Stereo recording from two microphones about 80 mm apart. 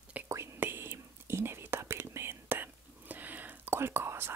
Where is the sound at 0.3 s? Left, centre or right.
Right.